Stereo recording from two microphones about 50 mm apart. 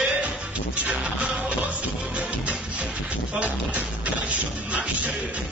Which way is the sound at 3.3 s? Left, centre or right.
Right.